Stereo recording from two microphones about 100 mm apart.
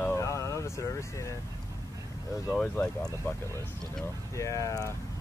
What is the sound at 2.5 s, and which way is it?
Speech, 15° left (ahead or behind).